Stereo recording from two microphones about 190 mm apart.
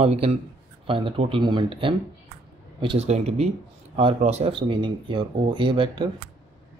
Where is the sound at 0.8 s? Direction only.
30° right (ahead or behind).